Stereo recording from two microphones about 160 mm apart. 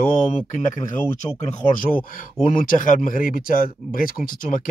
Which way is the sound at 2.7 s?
60° left (ahead or behind).